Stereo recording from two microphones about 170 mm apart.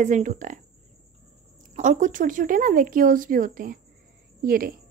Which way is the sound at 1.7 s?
45° right (ahead or behind).